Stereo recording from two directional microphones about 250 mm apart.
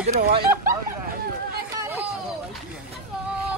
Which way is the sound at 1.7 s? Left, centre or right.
Centre.